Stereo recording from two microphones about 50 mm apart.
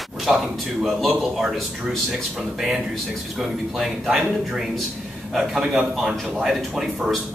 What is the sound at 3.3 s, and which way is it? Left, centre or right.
Speech, centre.